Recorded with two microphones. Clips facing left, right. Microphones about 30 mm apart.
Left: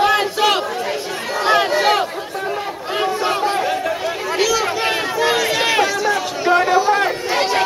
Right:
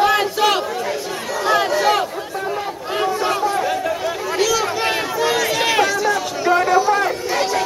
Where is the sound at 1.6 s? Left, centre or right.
Left.